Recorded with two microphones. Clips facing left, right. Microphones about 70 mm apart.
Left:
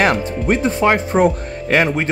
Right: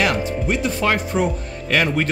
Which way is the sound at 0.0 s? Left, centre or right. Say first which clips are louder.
Left 4 dB; left.